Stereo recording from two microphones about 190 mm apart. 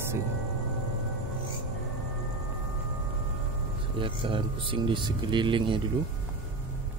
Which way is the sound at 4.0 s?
25° right (ahead or behind).